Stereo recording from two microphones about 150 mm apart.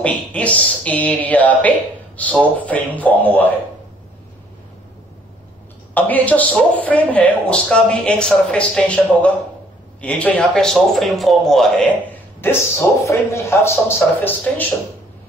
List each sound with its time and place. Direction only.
0.0 s speech: 10° left (ahead or behind)
5.9 s a man's voice: 10° left (ahead or behind)
12.4 s speech: 15° left (ahead or behind)